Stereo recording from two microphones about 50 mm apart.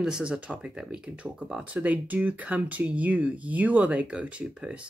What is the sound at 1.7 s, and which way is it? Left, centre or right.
Speech, right.